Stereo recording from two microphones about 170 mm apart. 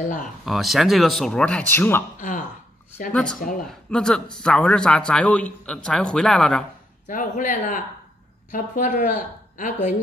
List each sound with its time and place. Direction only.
0.5 s a man's voice: centre (ahead or behind)
2.1 s speech: 50° left (ahead or behind)
3.1 s a man's voice: 5° left (ahead or behind)
7.1 s speech: 50° left (ahead or behind)